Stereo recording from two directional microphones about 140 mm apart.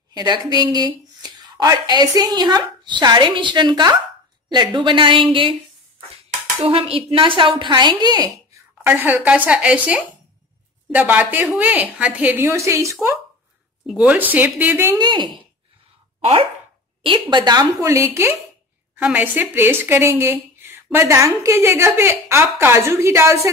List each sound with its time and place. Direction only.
0.1 s speech: 30° right (ahead or behind)
6.6 s speech: 40° right (ahead or behind)
8.8 s a woman's voice: 15° right (ahead or behind)
13.8 s a woman's voice: 10° right (ahead or behind)
15.0 s speech: 35° right (ahead or behind)
17.0 s a woman's voice: 35° right (ahead or behind)